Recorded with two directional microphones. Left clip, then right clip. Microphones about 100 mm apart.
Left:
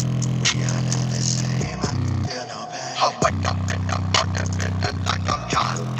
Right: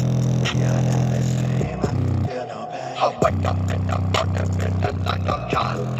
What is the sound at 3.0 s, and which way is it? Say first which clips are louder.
Music: even; 30° right (ahead or behind).